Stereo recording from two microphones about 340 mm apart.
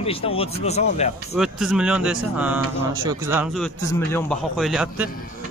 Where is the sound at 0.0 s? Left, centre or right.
Centre.